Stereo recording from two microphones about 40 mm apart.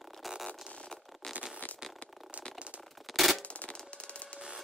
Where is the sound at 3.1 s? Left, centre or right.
Centre.